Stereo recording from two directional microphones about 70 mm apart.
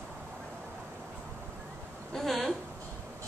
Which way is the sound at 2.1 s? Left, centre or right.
Centre.